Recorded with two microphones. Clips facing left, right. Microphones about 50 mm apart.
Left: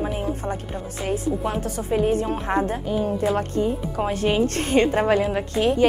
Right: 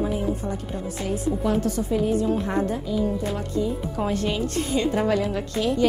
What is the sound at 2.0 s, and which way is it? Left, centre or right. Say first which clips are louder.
A woman's voice: left 1 dB; left.